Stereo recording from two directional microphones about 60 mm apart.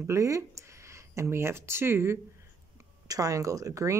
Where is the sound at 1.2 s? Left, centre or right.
Right.